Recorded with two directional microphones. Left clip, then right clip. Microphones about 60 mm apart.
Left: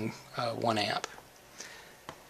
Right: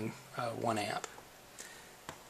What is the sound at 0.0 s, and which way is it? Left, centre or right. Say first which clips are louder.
Speech: left 4 dB; left.